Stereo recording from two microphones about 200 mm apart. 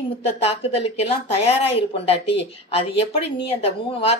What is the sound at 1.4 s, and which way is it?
Speech, 30° left (ahead or behind).